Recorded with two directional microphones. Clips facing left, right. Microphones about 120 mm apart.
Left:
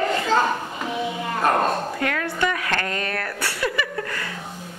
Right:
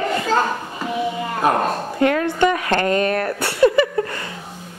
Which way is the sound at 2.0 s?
25° right (ahead or behind).